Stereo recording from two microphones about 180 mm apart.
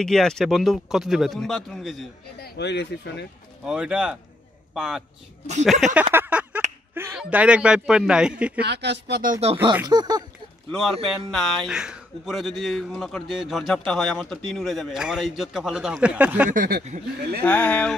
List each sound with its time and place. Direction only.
0.0 s speech: 5° left (ahead or behind)
2.4 s speech: 65° left (ahead or behind)
3.6 s speech: 5° right (ahead or behind)
6.1 s a sound: 10° right (ahead or behind)
7.2 s speech: 5° right (ahead or behind)
8.5 s speech: 70° right (ahead or behind)
9.2 s speech: 45° right (ahead or behind)
9.5 s speech: 30° right (ahead or behind)
10.7 s speech: centre (ahead or behind)
16.4 s speech: 50° right (ahead or behind)
17.4 s speech: 10° left (ahead or behind)